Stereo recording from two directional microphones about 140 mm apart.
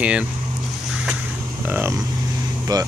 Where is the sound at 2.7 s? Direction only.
30° right (ahead or behind).